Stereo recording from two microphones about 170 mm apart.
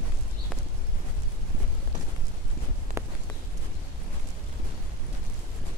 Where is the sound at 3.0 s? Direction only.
15° right (ahead or behind).